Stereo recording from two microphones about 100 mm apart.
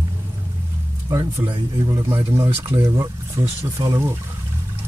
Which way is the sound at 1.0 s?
30° right (ahead or behind).